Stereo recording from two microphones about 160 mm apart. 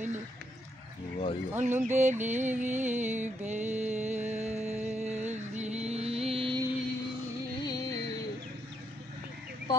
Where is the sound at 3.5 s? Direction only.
45° right (ahead or behind).